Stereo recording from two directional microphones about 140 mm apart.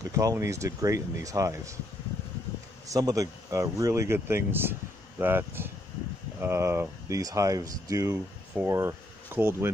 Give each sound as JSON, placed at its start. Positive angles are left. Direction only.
{"t": 0.1, "sound": "speech", "side_deg": -25}
{"t": 2.9, "sound": "speech", "side_deg": -25}